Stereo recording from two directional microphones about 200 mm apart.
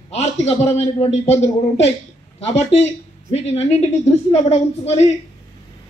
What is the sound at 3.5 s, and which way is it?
A man's voice, 35° left (ahead or behind).